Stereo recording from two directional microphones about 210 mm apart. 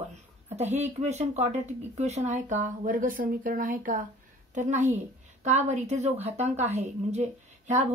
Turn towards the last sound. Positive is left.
turn(degrees=-35)  # may be behind; listen again after turning